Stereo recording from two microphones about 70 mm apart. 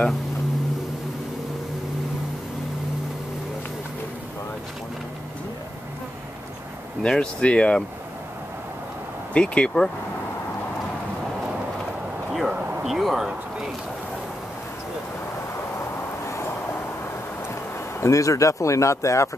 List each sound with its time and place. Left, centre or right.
7.0 s speech: centre
9.3 s speech: centre
12.3 s a sound: centre
18.0 s speech: left